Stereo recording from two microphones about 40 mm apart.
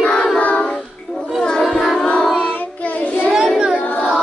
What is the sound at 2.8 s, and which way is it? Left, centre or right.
Child singing, left.